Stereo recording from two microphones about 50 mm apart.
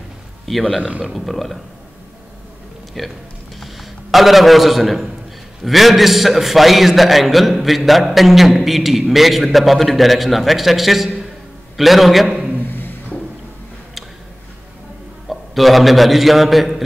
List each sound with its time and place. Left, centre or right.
0.5 s a man's voice: centre
0.7 s speech: right
1.1 s a man's voice: centre
2.9 s a man's voice: centre
3.5 s a sound: centre
5.6 s a man's voice: centre
12.3 s a sound: centre
12.6 s a sound: left
15.2 s a man's voice: centre